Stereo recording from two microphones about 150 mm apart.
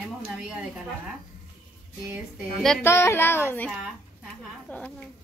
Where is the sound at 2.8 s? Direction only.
15° left (ahead or behind).